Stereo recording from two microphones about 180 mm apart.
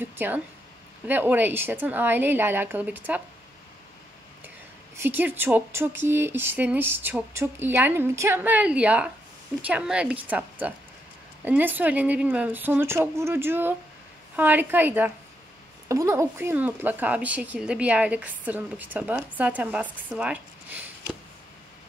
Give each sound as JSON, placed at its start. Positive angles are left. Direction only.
{"t": 0.0, "sound": "speech", "side_deg": -10}
{"t": 4.9, "sound": "speech", "side_deg": -10}